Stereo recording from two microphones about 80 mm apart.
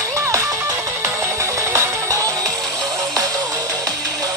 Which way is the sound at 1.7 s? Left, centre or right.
Right.